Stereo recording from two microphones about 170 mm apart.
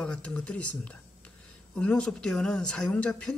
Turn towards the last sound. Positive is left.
turn(degrees=5)  # may be behind; listen again after turning